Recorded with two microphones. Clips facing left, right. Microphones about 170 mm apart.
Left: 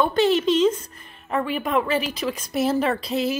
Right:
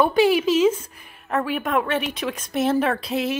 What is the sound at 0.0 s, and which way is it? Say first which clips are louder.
A woman's voice: right 2 dB; 10° right (ahead or behind).